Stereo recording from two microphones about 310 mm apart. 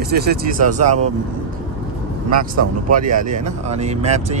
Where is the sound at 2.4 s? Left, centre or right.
Right.